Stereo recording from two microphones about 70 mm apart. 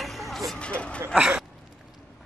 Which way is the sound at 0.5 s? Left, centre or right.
Centre.